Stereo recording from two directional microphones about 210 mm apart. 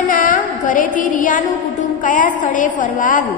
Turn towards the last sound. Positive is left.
turn(degrees=40)  # may be behind; listen again after turning